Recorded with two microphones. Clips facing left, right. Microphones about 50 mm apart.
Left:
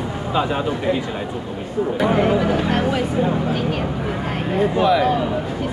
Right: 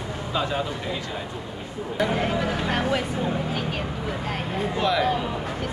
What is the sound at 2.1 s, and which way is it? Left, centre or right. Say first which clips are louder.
Speech: left 7 dB; centre.